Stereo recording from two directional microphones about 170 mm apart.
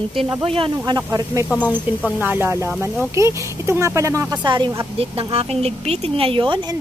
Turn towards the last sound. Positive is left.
turn(degrees=-30)  # may be behind; listen again after turning